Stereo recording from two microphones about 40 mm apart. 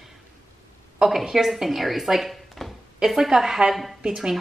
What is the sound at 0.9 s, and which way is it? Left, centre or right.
A woman's voice, centre.